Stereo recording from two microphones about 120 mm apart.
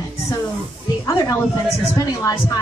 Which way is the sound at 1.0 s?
30° left (ahead or behind).